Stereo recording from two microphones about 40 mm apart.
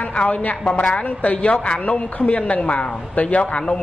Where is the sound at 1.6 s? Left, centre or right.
Left.